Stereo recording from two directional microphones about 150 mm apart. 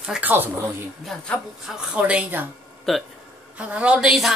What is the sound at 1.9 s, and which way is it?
Speech, 10° right (ahead or behind).